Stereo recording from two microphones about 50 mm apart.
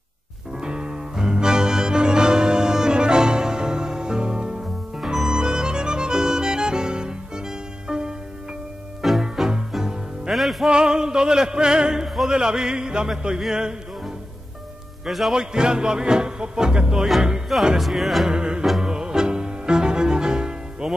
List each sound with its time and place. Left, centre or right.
0.6 s music: centre
5.0 s music: centre
5.4 s music: centre
9.2 s music: centre
10.7 s music: centre
15.0 s music: centre
15.3 s music: centre
17.7 s music: centre
18.3 s music: centre